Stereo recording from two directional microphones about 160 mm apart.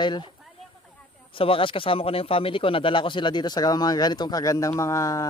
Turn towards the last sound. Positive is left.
turn(degrees=20)  # may be behind; listen again after turning